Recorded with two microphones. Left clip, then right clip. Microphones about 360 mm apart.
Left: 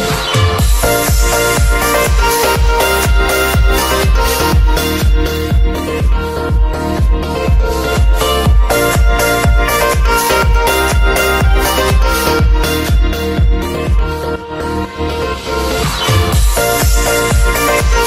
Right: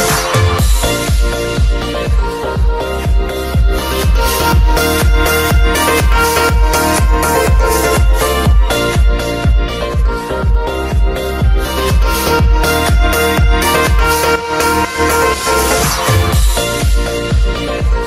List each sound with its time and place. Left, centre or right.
0.1 s music: centre
2.4 s music: left
4.3 s music: centre
5.9 s music: right
10.0 s music: left
12.1 s music: centre
13.7 s music: right
15.8 s music: centre